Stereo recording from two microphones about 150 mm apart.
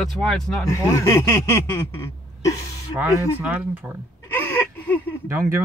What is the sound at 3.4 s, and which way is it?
Speech, 10° right (ahead or behind).